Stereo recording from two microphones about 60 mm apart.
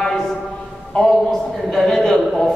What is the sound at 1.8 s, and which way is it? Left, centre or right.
Speech, centre.